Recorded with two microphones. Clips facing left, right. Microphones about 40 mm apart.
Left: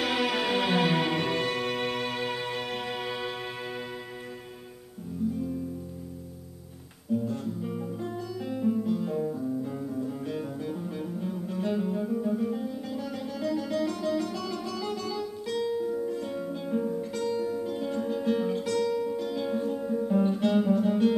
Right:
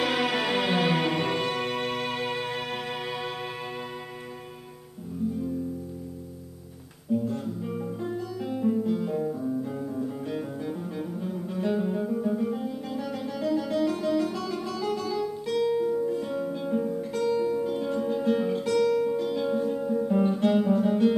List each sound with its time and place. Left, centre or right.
0.0 s music: centre
7.2 s guitar: centre
9.0 s music: centre
15.7 s music: centre
16.0 s guitar: centre
19.1 s music: centre
20.3 s guitar: centre